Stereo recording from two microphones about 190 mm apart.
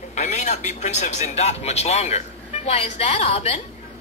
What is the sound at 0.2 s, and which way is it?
Speech, 40° left (ahead or behind).